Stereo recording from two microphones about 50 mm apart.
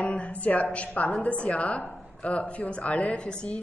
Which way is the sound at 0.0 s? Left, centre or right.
Left.